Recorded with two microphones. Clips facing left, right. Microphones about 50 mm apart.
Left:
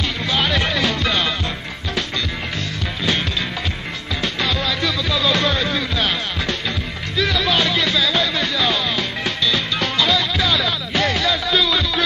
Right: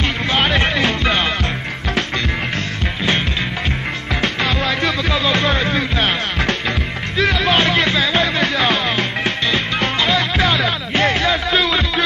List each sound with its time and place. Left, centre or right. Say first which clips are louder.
0.0 s music: right 3 dB; right
4.4 s music: even; right
5.2 s music: right 1 dB; right